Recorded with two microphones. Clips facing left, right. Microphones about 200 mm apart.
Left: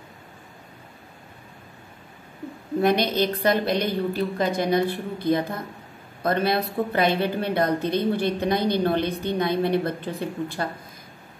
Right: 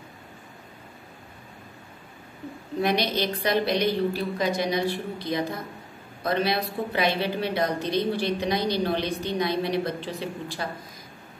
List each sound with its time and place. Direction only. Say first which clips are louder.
2.8 s a woman's voice: left 4 dB; 55° left (ahead or behind)